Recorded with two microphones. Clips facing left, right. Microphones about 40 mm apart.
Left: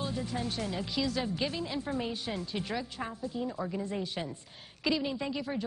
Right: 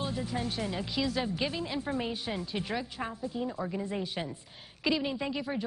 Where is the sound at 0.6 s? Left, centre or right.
Centre.